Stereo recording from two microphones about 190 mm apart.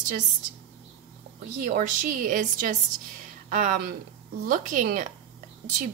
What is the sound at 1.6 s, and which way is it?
A woman's voice, 45° right (ahead or behind).